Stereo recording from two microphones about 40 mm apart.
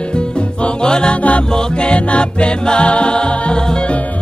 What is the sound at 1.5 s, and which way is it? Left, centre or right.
Music, left.